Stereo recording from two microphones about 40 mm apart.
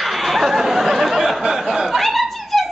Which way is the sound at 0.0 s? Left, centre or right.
Centre.